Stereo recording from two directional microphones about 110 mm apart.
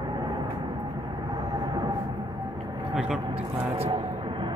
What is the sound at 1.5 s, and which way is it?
Vehicle, 40° right (ahead or behind).